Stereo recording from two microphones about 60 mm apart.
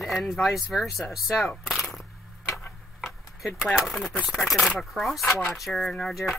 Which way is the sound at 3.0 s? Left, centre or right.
Centre.